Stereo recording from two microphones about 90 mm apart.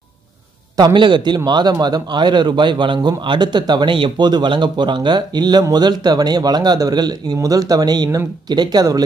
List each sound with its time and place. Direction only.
0.7 s a man's voice: 55° right (ahead or behind)